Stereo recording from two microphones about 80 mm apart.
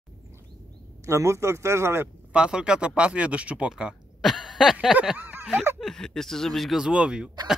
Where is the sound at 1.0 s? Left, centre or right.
Right.